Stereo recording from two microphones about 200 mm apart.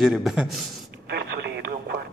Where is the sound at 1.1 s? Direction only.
55° right (ahead or behind).